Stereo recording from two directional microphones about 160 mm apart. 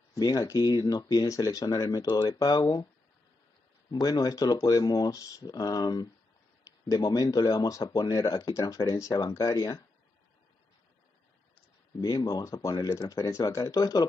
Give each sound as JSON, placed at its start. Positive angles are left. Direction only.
{"t": 0.1, "sound": "speech", "side_deg": 25}
{"t": 3.9, "sound": "speech", "side_deg": 25}
{"t": 12.0, "sound": "speech", "side_deg": 20}